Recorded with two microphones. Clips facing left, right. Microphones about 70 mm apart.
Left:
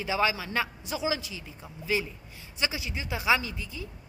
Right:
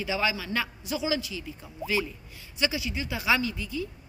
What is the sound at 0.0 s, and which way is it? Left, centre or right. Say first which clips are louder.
A man's voice: left 1 dB; left.